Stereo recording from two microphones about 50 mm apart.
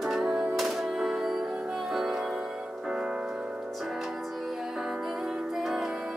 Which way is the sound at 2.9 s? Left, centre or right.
Centre.